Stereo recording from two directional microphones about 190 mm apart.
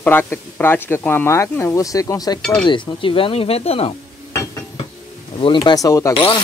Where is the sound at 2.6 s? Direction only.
25° left (ahead or behind).